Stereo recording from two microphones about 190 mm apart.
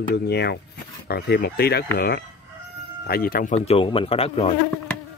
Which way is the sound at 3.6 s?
30° left (ahead or behind).